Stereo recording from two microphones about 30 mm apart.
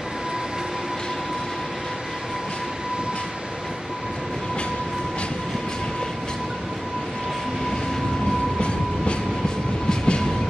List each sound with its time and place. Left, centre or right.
8.5 s train: left